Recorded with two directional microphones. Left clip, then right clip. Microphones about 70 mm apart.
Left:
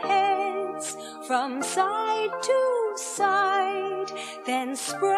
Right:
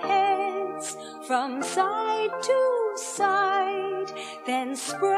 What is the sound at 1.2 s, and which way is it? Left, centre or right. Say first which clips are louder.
Music: even; left.